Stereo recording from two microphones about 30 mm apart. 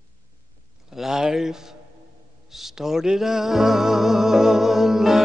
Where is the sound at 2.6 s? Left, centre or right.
Centre.